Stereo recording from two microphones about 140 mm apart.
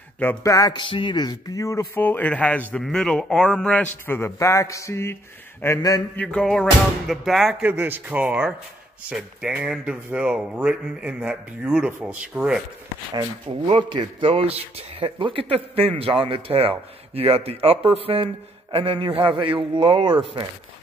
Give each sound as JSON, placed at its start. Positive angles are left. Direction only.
{"t": 0.2, "sound": "speech", "side_deg": 20}
{"t": 5.8, "sound": "a sound", "side_deg": 25}
{"t": 6.1, "sound": "speech", "side_deg": 5}
{"t": 7.6, "sound": "speech", "side_deg": -10}
{"t": 13.7, "sound": "speech", "side_deg": -35}